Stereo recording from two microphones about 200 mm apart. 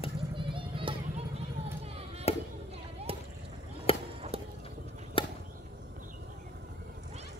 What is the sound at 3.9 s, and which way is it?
Chop, 30° left (ahead or behind).